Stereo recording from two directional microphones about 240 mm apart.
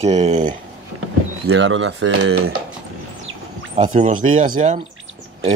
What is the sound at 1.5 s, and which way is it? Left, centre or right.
Speech, right.